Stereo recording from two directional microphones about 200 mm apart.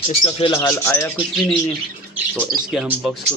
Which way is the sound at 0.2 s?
25° left (ahead or behind).